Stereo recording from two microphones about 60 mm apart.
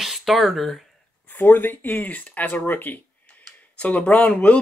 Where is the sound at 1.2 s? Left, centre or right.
Left.